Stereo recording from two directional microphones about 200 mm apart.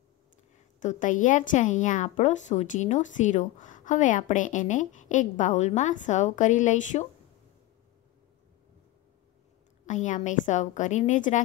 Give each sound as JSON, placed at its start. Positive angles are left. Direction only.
{"t": 0.7, "sound": "a woman's voice", "side_deg": 40}
{"t": 9.8, "sound": "a woman's voice", "side_deg": 40}